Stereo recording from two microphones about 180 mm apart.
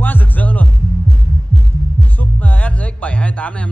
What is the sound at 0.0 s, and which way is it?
Music, 10° left (ahead or behind).